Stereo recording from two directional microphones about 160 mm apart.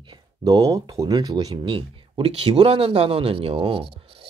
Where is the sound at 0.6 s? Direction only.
20° right (ahead or behind).